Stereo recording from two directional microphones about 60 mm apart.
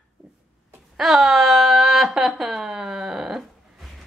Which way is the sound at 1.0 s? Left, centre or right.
Centre.